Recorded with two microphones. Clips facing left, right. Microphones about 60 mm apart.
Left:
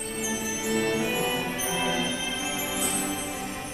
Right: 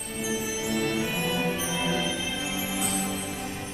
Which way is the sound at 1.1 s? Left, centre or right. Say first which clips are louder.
Left 2 dB; left.